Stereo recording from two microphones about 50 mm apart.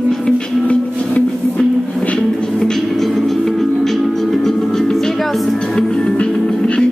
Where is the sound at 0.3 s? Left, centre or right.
Centre.